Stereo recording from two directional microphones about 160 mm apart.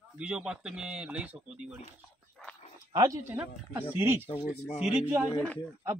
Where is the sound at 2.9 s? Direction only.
25° right (ahead or behind).